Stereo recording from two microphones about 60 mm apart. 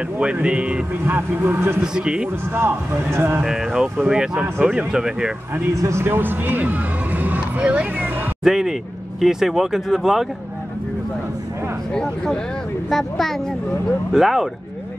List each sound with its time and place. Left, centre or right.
0.2 s speech: centre
1.0 s speech: right
2.0 s speech: centre
2.5 s speech: right
3.4 s speech: centre
5.8 s a man's voice: right
6.0 s speech: right
8.5 s speech: centre
11.9 s speech: centre
14.1 s speech: centre